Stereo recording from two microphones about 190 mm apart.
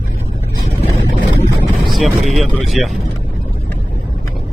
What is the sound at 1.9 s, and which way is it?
Speech, centre (ahead or behind).